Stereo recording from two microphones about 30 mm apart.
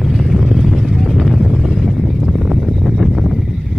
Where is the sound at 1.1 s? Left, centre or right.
Centre.